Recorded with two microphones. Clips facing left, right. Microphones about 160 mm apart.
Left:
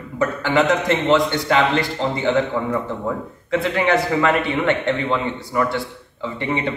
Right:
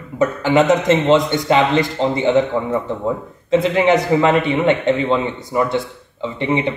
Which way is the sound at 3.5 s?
20° right (ahead or behind).